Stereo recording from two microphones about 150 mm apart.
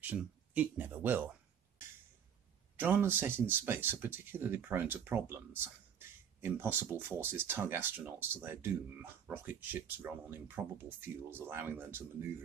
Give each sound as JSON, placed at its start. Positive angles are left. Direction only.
{"t": 0.0, "sound": "speech", "side_deg": -10}
{"t": 2.8, "sound": "speech", "side_deg": -15}